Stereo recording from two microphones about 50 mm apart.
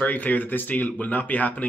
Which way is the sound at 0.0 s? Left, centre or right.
Left.